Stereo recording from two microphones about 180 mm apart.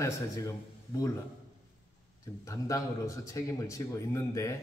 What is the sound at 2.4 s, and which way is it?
A man's voice, 20° left (ahead or behind).